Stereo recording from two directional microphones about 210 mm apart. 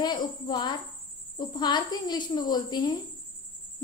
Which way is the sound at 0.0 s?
20° left (ahead or behind).